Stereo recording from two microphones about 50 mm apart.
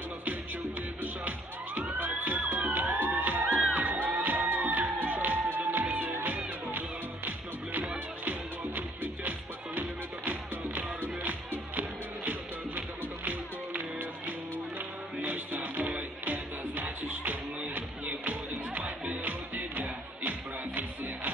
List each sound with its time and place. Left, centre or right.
1.8 s music: right
8.3 s music: right
15.2 s music: right